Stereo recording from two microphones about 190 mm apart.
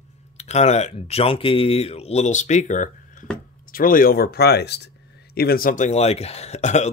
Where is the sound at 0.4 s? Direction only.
35° left (ahead or behind).